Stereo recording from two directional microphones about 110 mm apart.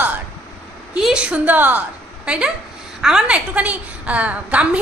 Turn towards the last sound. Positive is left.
turn(degrees=-10)  # may be behind; listen again after turning